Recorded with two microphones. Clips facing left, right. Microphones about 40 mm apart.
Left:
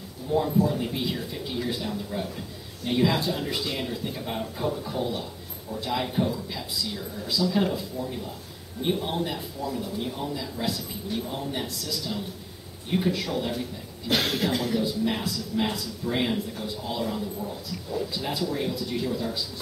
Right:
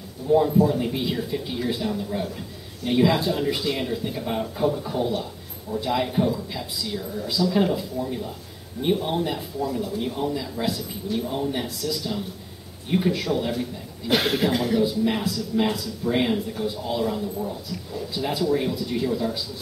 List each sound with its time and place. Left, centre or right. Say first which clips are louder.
0.6 s a man's voice: right 4 dB; centre
8.8 s a man's voice: right 4 dB; centre